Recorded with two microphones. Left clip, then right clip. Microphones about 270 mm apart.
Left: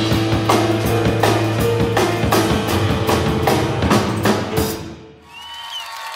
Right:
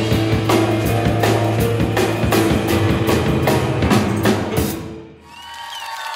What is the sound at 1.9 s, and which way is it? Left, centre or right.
Music, centre.